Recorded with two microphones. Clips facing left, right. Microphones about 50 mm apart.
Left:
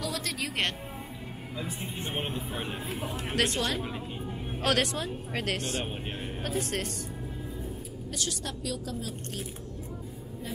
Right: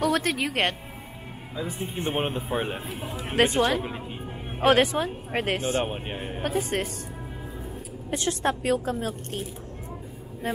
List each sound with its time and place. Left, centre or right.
0.0 s music: right
1.6 s a woman's voice: right; by 6.9 s centre
8.1 s a woman's voice: right